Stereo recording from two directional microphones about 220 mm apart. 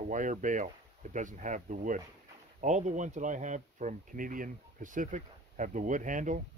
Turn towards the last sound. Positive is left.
turn(degrees=-35)  # may be behind; listen again after turning